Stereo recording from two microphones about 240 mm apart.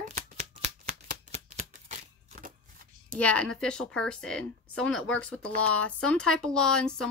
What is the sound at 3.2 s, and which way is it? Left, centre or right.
Speech, centre.